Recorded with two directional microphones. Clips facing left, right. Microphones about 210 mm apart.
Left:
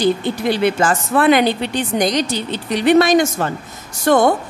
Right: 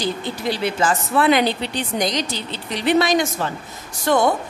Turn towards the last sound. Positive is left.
turn(degrees=50)  # may be behind; listen again after turning